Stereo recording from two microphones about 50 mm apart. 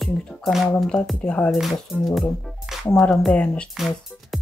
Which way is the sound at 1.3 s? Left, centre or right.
Left.